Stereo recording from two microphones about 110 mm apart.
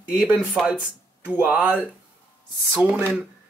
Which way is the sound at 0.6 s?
Centre (ahead or behind).